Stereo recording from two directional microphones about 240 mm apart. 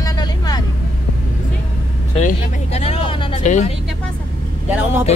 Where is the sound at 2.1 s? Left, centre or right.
Left.